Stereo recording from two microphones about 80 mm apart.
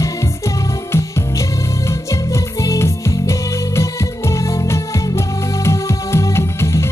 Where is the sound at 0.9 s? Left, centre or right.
Left.